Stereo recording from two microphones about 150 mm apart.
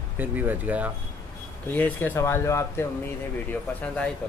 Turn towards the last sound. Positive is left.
turn(degrees=10)  # may be behind; listen again after turning